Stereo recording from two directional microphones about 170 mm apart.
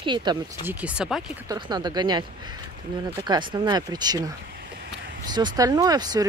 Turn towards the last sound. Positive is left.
turn(degrees=-25)  # may be behind; listen again after turning